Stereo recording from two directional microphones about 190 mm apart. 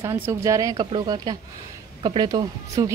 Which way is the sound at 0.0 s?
15° right (ahead or behind).